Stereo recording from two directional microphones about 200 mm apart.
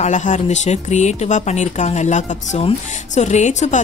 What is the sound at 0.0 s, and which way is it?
Speech, 35° left (ahead or behind).